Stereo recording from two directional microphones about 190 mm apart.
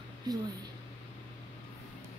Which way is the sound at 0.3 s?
20° right (ahead or behind).